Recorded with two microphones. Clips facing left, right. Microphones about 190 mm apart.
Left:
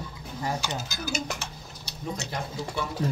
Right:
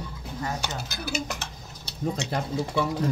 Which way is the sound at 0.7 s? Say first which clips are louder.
Even; 60° right (ahead or behind).